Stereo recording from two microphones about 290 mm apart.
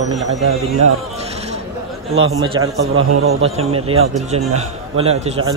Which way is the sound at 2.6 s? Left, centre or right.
Right.